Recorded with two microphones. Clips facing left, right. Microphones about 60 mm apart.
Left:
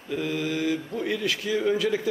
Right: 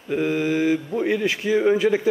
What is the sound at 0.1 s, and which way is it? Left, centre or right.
A man's voice, right.